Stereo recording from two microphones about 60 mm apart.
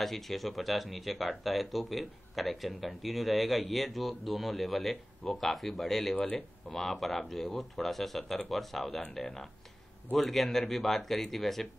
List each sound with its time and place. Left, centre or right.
0.0 s speech: centre
6.1 s speech: centre
6.7 s speech: centre
10.1 s speech: centre